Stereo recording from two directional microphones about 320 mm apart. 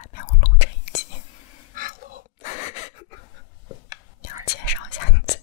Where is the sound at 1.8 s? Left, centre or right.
Right.